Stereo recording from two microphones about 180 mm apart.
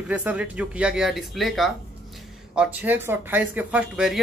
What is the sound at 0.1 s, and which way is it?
Speech, 10° right (ahead or behind).